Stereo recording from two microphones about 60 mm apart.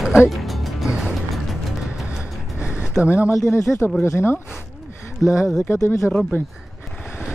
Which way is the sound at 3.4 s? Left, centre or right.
Left.